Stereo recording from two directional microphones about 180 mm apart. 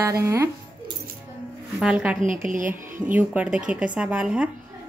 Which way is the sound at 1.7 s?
5° right (ahead or behind).